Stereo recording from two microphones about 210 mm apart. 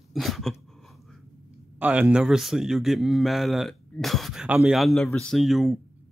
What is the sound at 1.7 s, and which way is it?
Speech, 5° right (ahead or behind).